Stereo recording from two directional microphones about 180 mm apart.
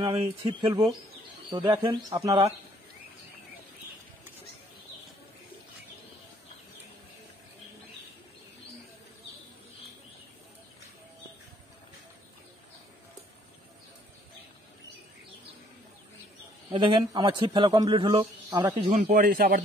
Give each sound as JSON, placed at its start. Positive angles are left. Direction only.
{"t": 0.0, "sound": "a man's voice", "side_deg": -25}
{"t": 16.7, "sound": "a man's voice", "side_deg": -25}
{"t": 19.0, "sound": "a man's voice", "side_deg": -55}